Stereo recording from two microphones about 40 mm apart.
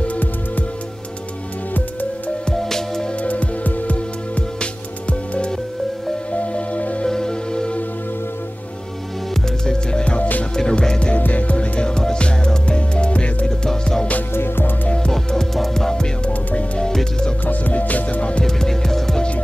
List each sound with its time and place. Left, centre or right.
0.0 s music: left
1.7 s music: left
2.6 s music: centre
3.2 s music: left
6.3 s music: left
7.1 s music: centre
10.5 s music: centre
11.1 s music: left
14.3 s music: left
14.9 s music: centre
17.5 s music: left
18.4 s music: centre